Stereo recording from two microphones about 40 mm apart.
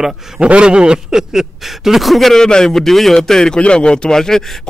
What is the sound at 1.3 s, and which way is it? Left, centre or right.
Speech, centre.